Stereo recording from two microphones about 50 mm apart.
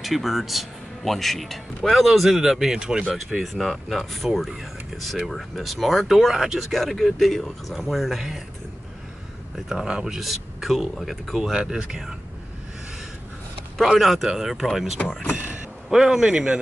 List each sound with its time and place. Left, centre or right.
0.0 s a man's voice: centre
3.3 s a man's voice: centre
6.7 s a man's voice: centre
9.7 s speech: centre
13.9 s a man's voice: centre
15.3 s a sound: right
15.9 s speech: centre